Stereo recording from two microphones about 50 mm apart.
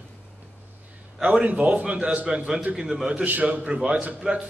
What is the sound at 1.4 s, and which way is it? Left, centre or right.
A man's voice, right.